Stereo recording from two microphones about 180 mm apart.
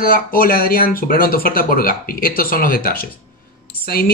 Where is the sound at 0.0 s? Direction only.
55° left (ahead or behind).